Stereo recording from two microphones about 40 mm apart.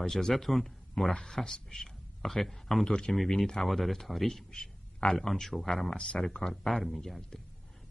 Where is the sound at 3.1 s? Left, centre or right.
Centre.